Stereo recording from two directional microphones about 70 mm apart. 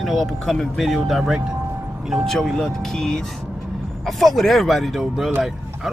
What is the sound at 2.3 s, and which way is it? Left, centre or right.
Speech, centre.